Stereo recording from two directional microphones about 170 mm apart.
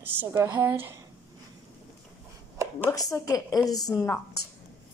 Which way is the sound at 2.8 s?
20° left (ahead or behind).